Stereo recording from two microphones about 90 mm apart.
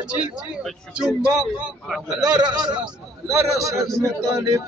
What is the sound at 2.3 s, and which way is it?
Speech, 50° right (ahead or behind).